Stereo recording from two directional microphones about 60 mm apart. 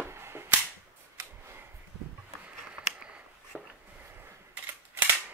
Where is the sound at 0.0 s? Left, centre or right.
Right.